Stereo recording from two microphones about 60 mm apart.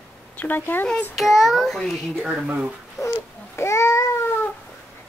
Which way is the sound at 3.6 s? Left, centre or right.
Left.